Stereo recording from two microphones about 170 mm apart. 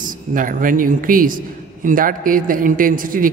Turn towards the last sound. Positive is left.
turn(degrees=-55)  # may be behind; listen again after turning